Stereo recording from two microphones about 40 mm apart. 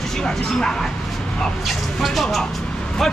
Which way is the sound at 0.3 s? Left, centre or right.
Centre.